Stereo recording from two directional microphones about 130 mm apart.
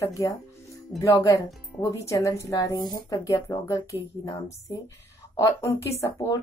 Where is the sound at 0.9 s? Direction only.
25° left (ahead or behind).